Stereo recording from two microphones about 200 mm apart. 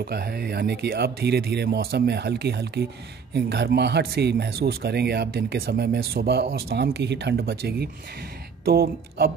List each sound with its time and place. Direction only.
0.0 s speech: 50° right (ahead or behind)